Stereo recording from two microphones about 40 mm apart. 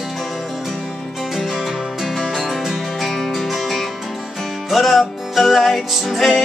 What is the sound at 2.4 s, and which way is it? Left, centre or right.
Music, centre.